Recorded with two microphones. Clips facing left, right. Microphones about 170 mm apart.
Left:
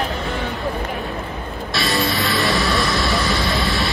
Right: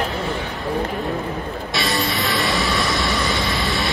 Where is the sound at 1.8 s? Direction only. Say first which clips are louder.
Left 2 dB; centre (ahead or behind).